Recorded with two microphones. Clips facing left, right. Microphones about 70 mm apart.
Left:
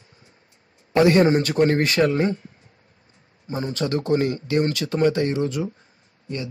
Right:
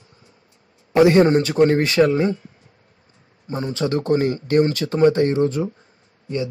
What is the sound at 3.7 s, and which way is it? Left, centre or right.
Speech, right.